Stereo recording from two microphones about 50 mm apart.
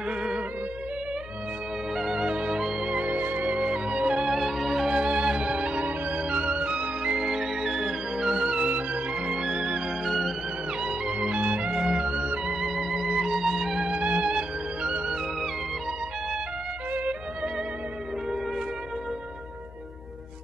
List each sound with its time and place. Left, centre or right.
2.0 s music: centre
2.2 s music: centre
3.0 s music: right
4.3 s music: centre
10.0 s music: centre
10.8 s music: centre
12.7 s music: centre
13.8 s music: right
16.9 s music: right